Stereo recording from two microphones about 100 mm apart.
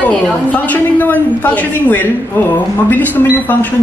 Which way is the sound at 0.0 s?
15° left (ahead or behind).